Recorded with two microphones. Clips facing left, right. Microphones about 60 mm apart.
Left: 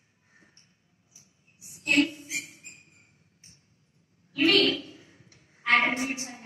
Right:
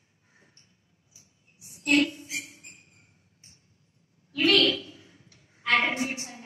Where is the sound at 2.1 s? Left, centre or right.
Left.